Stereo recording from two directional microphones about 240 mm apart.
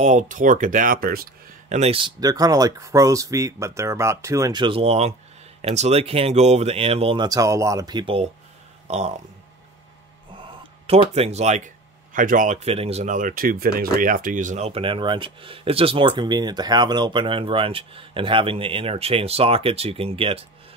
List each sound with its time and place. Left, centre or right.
0.0 s speech: right
10.3 s speech: right